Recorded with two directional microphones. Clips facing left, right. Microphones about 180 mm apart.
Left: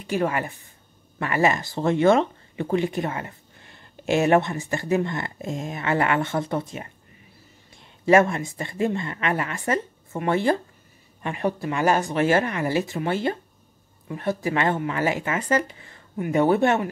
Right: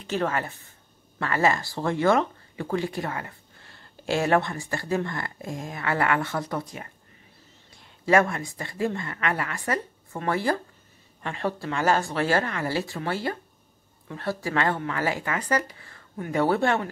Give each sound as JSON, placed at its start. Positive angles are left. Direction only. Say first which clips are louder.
{"t": 0.0, "sound": "a woman's voice", "louder": "left 3 dB", "side_deg": 10}